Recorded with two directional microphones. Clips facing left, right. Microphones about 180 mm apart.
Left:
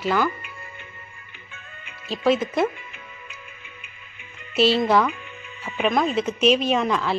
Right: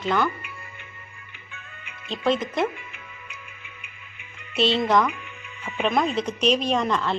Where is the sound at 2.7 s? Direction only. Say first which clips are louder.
Even; 35° left (ahead or behind).